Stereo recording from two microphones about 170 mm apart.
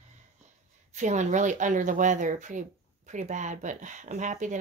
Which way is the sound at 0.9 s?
45° right (ahead or behind).